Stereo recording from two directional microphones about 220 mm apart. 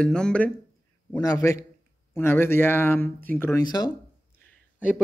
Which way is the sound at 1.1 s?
15° left (ahead or behind).